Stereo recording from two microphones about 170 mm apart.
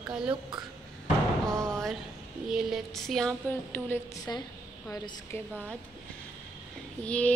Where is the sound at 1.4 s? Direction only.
5° left (ahead or behind).